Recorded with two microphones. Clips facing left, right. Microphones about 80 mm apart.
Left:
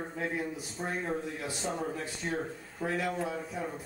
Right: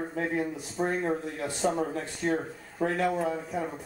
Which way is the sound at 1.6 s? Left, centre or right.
Right.